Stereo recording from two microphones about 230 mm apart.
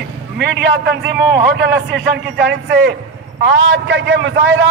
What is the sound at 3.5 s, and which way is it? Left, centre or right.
Speech, right.